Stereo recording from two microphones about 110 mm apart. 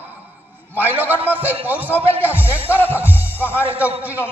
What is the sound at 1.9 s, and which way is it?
Speech, 20° left (ahead or behind).